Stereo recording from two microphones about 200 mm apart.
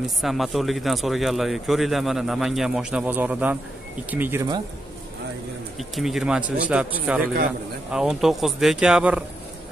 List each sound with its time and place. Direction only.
0.2 s speech: centre (ahead or behind)
5.8 s speech: centre (ahead or behind)